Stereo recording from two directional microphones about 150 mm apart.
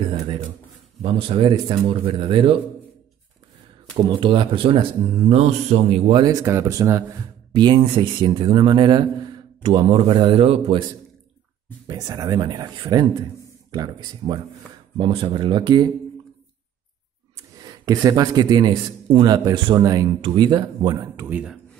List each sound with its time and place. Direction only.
1.0 s a man's voice: 35° right (ahead or behind)
3.9 s a man's voice: 35° right (ahead or behind)
6.2 s speech: 20° right (ahead or behind)
7.5 s a man's voice: 30° right (ahead or behind)
11.9 s a man's voice: 25° right (ahead or behind)
17.5 s a man's voice: 25° right (ahead or behind)
21.2 s speech: 10° right (ahead or behind)